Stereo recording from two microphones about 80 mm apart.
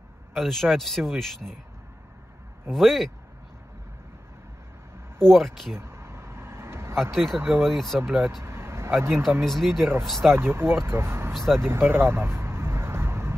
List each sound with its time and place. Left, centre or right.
0.3 s a man's voice: centre
2.7 s a man's voice: centre
5.2 s a man's voice: centre
5.8 s vehicle: right
7.0 s a man's voice: centre
7.3 s speech: right
7.6 s a man's voice: centre
8.4 s vehicle: right
9.4 s a man's voice: centre
10.3 s speech: right
11.3 s a man's voice: centre
11.6 s vehicle: right